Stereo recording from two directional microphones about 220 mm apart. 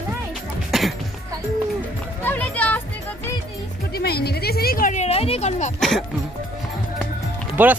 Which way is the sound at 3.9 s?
45° left (ahead or behind).